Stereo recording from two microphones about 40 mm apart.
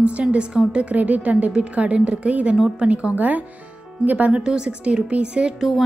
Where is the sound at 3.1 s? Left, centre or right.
Right.